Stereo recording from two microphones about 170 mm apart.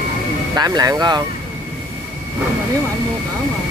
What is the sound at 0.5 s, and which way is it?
Speech, 20° right (ahead or behind).